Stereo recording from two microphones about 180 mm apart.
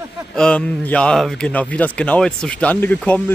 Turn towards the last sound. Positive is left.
turn(degrees=10)  # may be behind; listen again after turning